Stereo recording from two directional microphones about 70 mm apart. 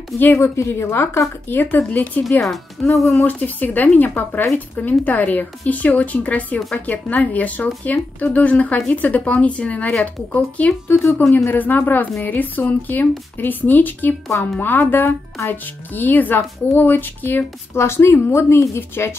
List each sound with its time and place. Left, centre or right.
0.2 s a woman's voice: left
2.4 s speech: centre
3.2 s a woman's voice: left
10.9 s a woman's voice: left
11.3 s a woman's voice: left
17.7 s a woman's voice: left